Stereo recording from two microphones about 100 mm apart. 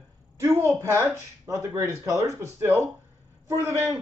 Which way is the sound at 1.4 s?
35° right (ahead or behind).